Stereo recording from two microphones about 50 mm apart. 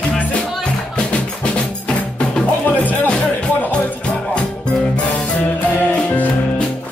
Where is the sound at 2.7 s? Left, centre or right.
Left.